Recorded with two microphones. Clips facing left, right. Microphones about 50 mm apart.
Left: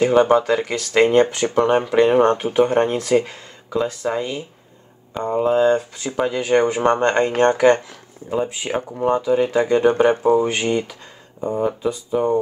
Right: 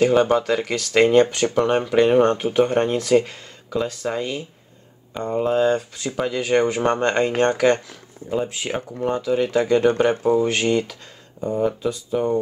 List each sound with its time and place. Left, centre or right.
0.0 s speech: centre